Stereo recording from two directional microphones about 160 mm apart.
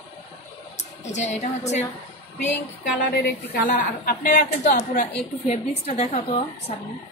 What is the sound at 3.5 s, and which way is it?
A woman's voice, 60° left (ahead or behind).